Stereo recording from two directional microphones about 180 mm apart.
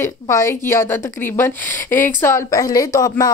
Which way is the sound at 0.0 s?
15° left (ahead or behind).